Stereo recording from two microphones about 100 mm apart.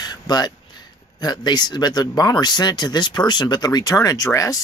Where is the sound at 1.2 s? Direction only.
45° left (ahead or behind).